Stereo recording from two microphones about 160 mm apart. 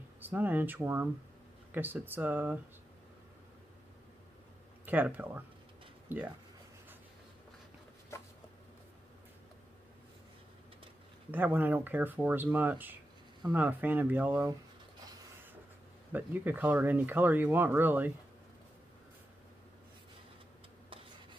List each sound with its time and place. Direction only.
0.2 s speech: 10° right (ahead or behind)
4.8 s speech: 10° right (ahead or behind)
8.1 s a sound: 15° left (ahead or behind)
11.3 s speech: 10° right (ahead or behind)
16.1 s speech: 10° right (ahead or behind)